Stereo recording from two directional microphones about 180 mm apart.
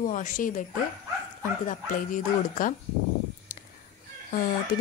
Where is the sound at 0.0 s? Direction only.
45° left (ahead or behind).